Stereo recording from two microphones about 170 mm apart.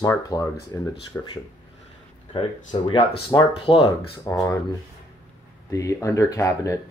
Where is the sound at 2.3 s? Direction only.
30° left (ahead or behind).